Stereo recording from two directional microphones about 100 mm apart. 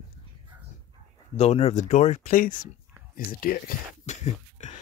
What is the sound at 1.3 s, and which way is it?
Speech, 90° left.